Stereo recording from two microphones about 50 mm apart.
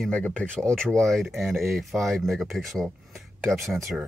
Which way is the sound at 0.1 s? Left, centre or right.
Left.